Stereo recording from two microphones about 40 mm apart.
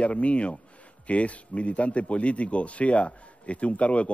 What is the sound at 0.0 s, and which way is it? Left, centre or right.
Speech, left.